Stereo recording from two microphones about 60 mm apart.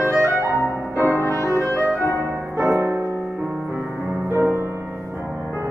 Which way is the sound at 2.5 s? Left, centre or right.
Right.